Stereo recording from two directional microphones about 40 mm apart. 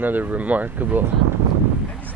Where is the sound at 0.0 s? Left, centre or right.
Right.